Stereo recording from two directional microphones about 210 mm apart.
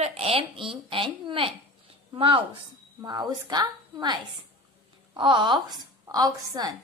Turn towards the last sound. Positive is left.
turn(degrees=-15)  # may be behind; listen again after turning